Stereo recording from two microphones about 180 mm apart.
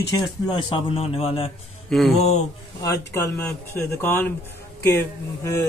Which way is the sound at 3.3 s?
10° left (ahead or behind).